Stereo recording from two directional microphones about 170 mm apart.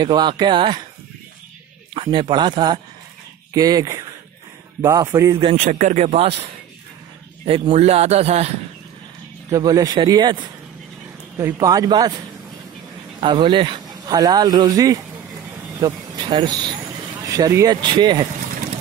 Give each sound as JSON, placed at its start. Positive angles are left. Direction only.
{"t": 0.0, "sound": "speech", "side_deg": -25}
{"t": 2.0, "sound": "a man's voice", "side_deg": -25}
{"t": 5.6, "sound": "speech", "side_deg": -50}
{"t": 7.4, "sound": "a man's voice", "side_deg": -35}
{"t": 9.5, "sound": "speech", "side_deg": -20}
{"t": 13.2, "sound": "speech", "side_deg": -25}